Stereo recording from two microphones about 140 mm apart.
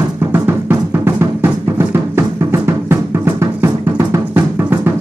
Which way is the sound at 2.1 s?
20° right (ahead or behind).